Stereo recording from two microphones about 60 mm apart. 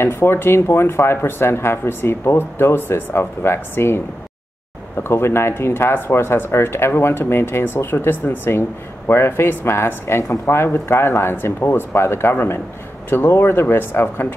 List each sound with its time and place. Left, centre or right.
0.0 s speech: left
5.0 s speech: left